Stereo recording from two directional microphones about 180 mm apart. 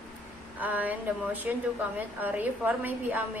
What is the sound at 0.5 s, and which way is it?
A woman's voice, 10° right (ahead or behind).